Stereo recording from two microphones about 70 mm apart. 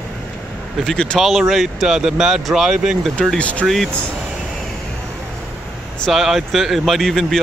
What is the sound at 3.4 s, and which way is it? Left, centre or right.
Speech, centre.